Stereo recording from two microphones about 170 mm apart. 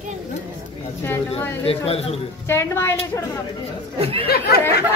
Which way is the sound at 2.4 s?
15° left (ahead or behind).